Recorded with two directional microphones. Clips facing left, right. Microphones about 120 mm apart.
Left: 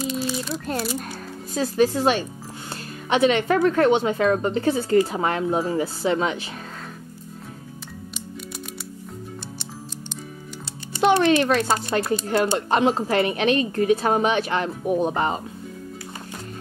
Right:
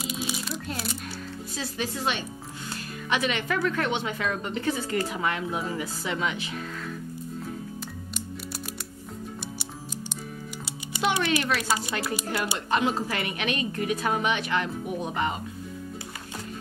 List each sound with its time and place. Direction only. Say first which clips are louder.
0.0 s crumpling: left 6 dB; 10° right (ahead or behind)
0.7 s a woman's voice: left 7 dB; 45° left (ahead or behind)
11.0 s speech: left 8 dB; 40° left (ahead or behind)
11.9 s a woman's voice: left 8 dB; 35° left (ahead or behind)